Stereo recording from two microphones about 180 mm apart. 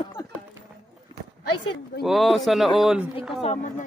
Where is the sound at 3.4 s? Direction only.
35° left (ahead or behind).